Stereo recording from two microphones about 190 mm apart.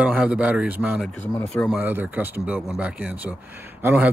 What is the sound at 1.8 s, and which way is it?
Speech, 10° right (ahead or behind).